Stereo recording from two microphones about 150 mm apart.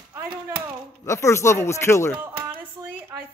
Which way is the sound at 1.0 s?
20° left (ahead or behind).